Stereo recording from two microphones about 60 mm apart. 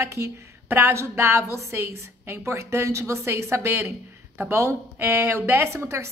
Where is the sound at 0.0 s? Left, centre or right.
Right.